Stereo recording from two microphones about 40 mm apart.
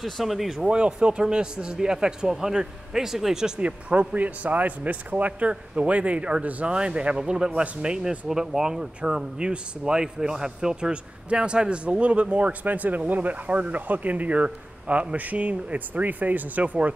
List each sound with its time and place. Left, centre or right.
0.0 s speech: centre
0.7 s a man's voice: right
3.6 s a man's voice: right; by 8.8 s centre
9.0 s speech: right